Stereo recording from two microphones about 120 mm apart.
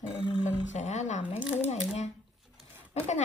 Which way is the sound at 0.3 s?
75° left (ahead or behind).